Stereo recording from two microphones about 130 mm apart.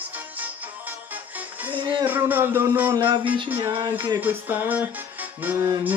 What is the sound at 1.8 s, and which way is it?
Speech, 40° right (ahead or behind).